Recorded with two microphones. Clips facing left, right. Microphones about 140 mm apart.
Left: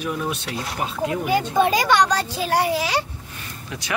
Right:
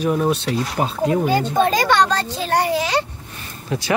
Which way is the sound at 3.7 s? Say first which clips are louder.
Right 11 dB; 30° right (ahead or behind).